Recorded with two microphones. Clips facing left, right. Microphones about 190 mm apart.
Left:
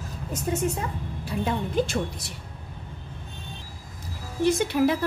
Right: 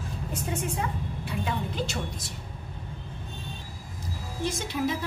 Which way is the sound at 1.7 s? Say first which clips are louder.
Left 7 dB; 55° left (ahead or behind).